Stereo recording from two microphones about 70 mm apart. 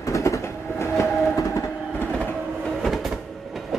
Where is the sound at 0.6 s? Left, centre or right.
Left.